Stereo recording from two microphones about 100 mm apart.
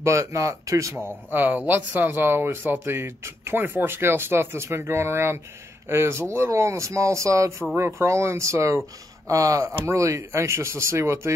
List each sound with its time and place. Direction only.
0.0 s speech: 30° right (ahead or behind)
1.0 s speech: 20° right (ahead or behind)